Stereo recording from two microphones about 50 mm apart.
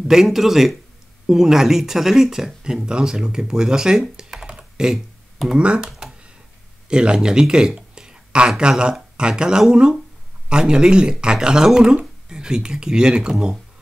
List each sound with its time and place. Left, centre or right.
0.1 s speech: centre
4.2 s computer keyboard: centre
4.9 s a sound: centre
5.6 s speech: centre